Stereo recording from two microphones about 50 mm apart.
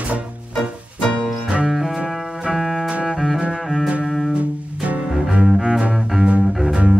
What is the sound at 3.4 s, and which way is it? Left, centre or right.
Music, centre.